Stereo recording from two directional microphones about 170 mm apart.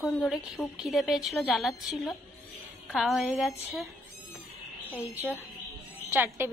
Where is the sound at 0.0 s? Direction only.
Centre (ahead or behind).